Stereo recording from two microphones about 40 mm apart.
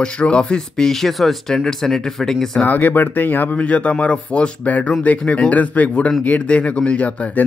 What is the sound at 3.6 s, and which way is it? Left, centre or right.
Speech, left.